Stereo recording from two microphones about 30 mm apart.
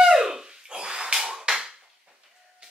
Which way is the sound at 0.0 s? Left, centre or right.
Centre.